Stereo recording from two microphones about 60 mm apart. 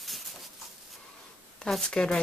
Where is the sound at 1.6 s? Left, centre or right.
Centre.